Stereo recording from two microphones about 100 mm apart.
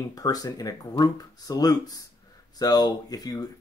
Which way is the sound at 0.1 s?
40° left (ahead or behind).